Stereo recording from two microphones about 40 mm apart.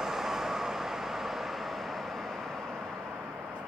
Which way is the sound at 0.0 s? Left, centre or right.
Centre.